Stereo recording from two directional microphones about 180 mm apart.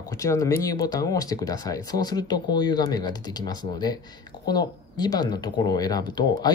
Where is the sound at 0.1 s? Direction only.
15° left (ahead or behind).